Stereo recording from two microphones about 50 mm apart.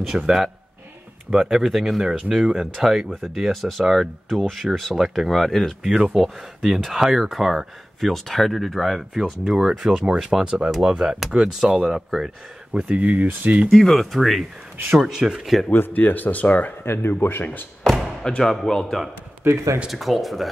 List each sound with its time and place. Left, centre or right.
0.1 s speech: right
1.3 s speech: centre
2.0 s speech: centre
5.9 s speech: centre
12.7 s speech: right
13.7 s speech: centre
15.0 s speech: centre
15.7 s speech: left
16.8 s speech: left
18.2 s speech: centre
19.4 s speech: right
19.9 s speech: centre